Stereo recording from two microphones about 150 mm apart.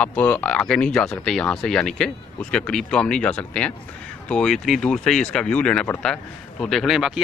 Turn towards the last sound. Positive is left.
turn(degrees=-5)  # may be behind; listen again after turning